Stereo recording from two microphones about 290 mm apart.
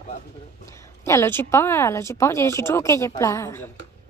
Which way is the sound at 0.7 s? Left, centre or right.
Centre.